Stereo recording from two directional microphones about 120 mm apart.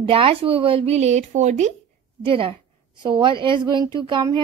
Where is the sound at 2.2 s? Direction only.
45° right (ahead or behind).